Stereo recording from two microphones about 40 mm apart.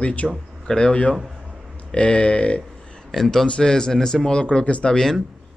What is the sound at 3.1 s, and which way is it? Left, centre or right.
Speech, centre.